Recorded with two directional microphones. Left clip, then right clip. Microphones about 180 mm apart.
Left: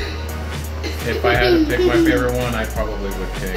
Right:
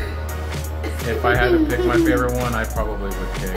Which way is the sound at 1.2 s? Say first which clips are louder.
Left 2 dB; 15° left (ahead or behind).